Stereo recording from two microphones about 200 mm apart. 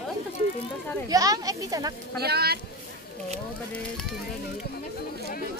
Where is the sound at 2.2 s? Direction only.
50° right (ahead or behind).